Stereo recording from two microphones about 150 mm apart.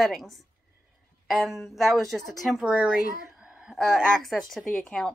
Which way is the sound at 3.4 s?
5° right (ahead or behind).